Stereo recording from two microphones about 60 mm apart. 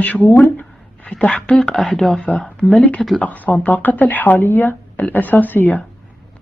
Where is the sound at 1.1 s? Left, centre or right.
Centre.